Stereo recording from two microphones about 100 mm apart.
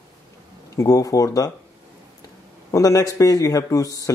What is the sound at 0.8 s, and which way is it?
Speech, 35° left (ahead or behind).